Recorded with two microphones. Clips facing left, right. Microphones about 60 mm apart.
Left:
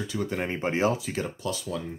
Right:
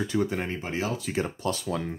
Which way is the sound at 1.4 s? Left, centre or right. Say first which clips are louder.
Right 2 dB; right.